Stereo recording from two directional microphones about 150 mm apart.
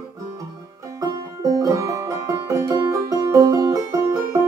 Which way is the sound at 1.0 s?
25° right (ahead or behind).